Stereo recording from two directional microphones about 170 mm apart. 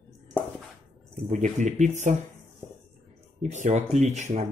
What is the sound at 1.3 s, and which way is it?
Speech, 45° right (ahead or behind).